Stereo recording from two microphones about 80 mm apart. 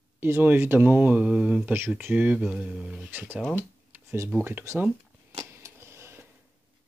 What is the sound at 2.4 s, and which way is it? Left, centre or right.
Speech, centre.